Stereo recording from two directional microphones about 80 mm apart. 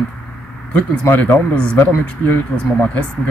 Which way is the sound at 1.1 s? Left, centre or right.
Left.